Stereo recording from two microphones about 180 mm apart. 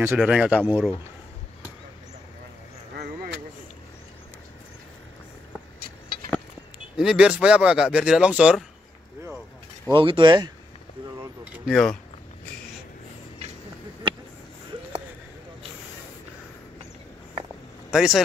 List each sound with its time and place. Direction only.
0.0 s speech: 5° right (ahead or behind)
7.0 s speech: 5° right (ahead or behind)
9.9 s speech: 25° right (ahead or behind)
11.5 s speech: centre (ahead or behind)
17.9 s speech: centre (ahead or behind)